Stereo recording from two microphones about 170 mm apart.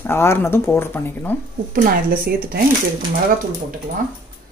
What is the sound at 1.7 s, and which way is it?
Speech, 60° right (ahead or behind).